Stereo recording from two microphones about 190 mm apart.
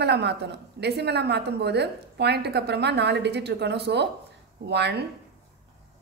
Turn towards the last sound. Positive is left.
turn(degrees=-60)  # may be behind; listen again after turning